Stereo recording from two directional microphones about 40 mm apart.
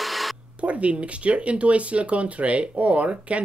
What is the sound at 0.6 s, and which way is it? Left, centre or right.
Speech, right.